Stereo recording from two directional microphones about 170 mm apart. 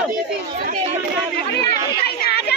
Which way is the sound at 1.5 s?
70° left (ahead or behind).